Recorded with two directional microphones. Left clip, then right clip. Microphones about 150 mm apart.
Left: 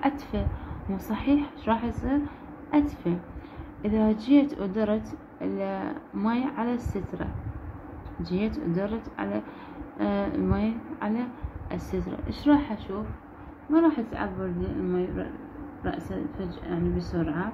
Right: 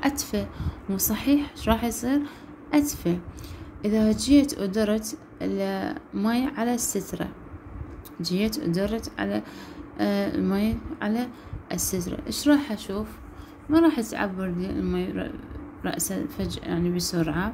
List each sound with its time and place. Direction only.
0.0 s a woman's voice: 40° right (ahead or behind)
8.3 s a woman's voice: 40° right (ahead or behind)
13.7 s a woman's voice: 75° right (ahead or behind); by 17.5 s 90° right